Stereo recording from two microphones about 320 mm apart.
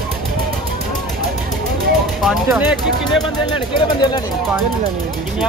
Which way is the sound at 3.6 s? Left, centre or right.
Centre.